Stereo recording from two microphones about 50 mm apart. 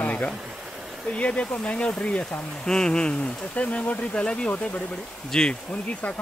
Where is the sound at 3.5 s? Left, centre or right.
Left; by 5.6 s centre.